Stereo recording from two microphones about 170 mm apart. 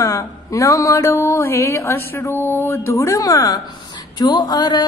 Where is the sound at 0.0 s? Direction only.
20° left (ahead or behind).